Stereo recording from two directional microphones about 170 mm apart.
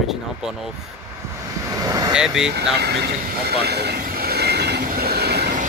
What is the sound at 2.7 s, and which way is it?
Vehicle, 75° right (ahead or behind).